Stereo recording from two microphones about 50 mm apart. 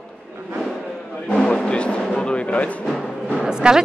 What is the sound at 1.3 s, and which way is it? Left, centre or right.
Music, centre.